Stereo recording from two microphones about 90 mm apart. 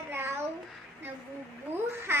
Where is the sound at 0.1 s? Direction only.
30° right (ahead or behind).